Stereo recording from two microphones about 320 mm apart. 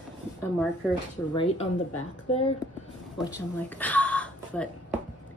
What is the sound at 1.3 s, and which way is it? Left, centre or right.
A woman's voice, centre.